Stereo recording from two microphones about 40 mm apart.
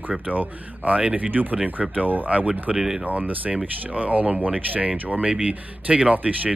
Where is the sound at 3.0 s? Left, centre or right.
Right.